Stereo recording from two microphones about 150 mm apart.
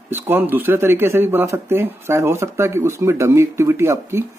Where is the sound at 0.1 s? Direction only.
15° right (ahead or behind).